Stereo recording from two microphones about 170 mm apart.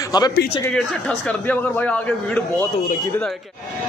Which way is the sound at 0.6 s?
5° left (ahead or behind).